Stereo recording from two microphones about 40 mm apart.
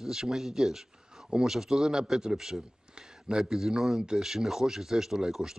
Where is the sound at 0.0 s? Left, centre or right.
Centre.